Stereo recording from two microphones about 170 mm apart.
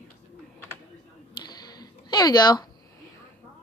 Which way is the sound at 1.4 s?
25° left (ahead or behind).